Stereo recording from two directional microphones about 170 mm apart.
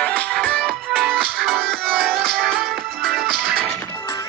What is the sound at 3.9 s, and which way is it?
Music, 15° left (ahead or behind).